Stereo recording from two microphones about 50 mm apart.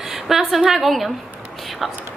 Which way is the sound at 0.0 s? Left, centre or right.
Centre.